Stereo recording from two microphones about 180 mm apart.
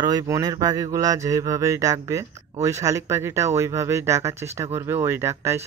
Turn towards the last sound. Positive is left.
turn(degrees=-15)  # may be behind; listen again after turning